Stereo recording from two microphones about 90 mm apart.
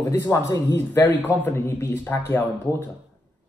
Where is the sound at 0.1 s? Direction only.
30° left (ahead or behind).